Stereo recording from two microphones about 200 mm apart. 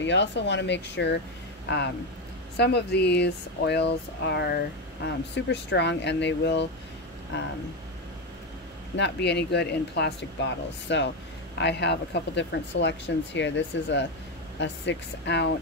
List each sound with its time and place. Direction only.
0.0 s speech: 60° left (ahead or behind)
8.9 s speech: 60° left (ahead or behind)